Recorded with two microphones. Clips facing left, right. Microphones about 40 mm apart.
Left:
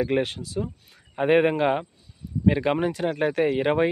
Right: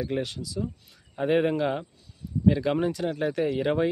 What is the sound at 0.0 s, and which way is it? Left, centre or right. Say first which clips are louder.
Speech: left 6 dB; left.